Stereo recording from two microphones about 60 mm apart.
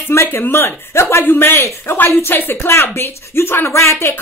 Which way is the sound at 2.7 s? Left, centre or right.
Left.